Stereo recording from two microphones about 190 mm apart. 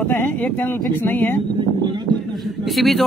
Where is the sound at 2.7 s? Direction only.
Centre (ahead or behind).